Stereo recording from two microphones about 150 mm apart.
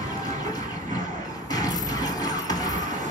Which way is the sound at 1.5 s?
25° left (ahead or behind).